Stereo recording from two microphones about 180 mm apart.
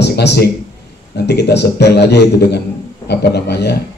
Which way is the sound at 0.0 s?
70° left (ahead or behind).